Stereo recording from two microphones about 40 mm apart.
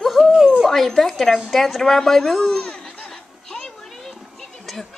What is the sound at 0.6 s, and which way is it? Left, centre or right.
A woman's voice, centre.